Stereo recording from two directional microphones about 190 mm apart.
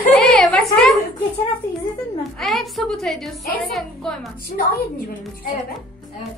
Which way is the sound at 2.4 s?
Centre (ahead or behind).